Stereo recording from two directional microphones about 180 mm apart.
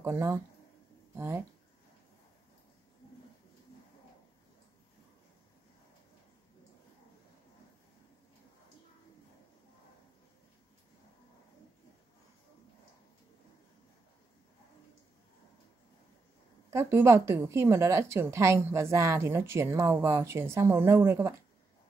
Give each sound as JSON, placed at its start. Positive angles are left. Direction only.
{"t": 0.0, "sound": "a woman's voice", "side_deg": -15}
{"t": 16.7, "sound": "a woman's voice", "side_deg": -15}